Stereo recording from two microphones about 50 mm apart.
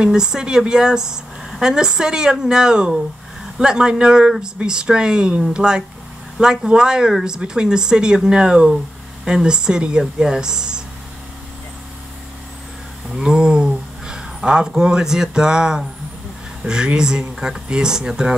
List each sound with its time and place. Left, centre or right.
0.0 s speech: centre
13.1 s speech: centre